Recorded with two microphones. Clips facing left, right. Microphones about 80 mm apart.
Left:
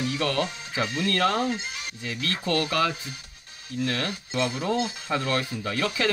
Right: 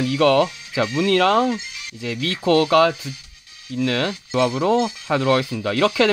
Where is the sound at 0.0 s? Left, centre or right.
Right.